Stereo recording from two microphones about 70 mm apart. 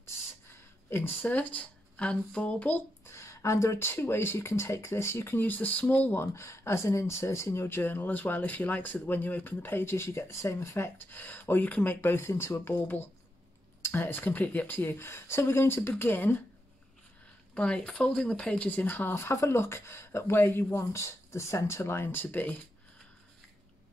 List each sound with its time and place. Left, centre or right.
0.8 s speech: left; by 2.7 s centre
2.7 s speech: left
6.1 s speech: left
11.1 s speech: left
17.6 s speech: centre